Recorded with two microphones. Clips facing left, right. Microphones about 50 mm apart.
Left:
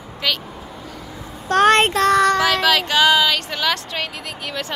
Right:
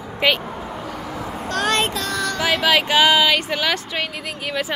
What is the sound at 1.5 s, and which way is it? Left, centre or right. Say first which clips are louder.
Child singing: left 7 dB; left.